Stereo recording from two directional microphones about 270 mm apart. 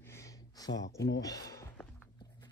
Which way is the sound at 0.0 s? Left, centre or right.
Centre.